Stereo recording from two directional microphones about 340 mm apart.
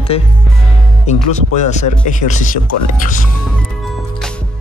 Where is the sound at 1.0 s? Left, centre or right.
Centre.